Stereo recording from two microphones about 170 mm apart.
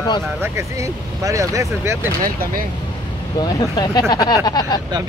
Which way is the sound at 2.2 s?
55° right (ahead or behind).